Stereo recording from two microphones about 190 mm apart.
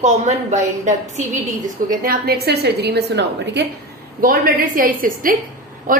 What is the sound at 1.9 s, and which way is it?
A woman's voice, 55° right (ahead or behind).